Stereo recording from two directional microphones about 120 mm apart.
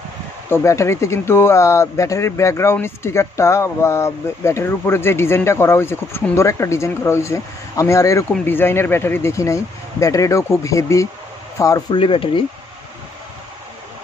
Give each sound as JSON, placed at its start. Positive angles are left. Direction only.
{"t": 0.5, "sound": "a man's voice", "side_deg": 25}
{"t": 11.9, "sound": "speech", "side_deg": 45}